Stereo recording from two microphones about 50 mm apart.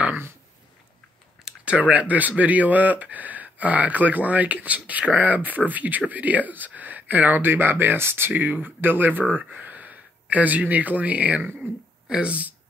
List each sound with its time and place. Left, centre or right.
1.6 s speech: right
8.3 s speech: right
11.6 s speech: centre
12.3 s speech: right